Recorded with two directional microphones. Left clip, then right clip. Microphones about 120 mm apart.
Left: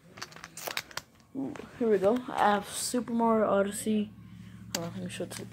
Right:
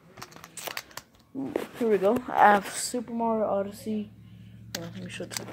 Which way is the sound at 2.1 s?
35° right (ahead or behind).